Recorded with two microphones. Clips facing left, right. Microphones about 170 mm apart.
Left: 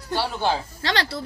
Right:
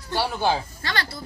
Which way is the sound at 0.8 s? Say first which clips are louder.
Left 5 dB; 75° left (ahead or behind).